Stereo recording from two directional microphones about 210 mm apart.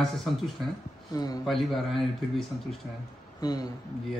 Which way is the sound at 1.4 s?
Centre (ahead or behind).